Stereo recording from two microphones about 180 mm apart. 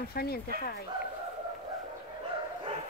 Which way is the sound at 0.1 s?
60° left (ahead or behind).